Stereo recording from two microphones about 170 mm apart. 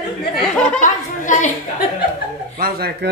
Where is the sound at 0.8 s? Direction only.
50° left (ahead or behind).